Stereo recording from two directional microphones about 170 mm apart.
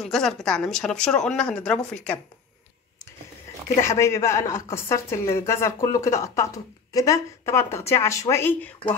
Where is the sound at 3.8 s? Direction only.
15° left (ahead or behind).